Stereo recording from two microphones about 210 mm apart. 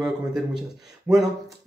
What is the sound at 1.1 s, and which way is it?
Speech, 5° right (ahead or behind).